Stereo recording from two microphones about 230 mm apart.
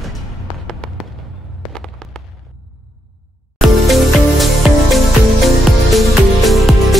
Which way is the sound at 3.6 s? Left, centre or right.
Centre.